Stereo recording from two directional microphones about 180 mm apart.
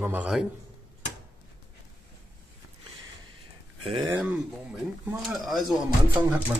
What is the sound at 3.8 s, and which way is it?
Speech, 30° right (ahead or behind).